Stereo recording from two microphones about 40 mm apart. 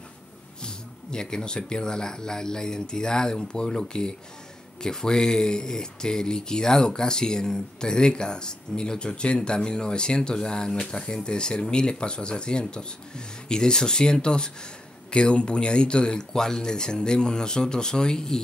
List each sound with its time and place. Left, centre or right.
0.6 s speech: centre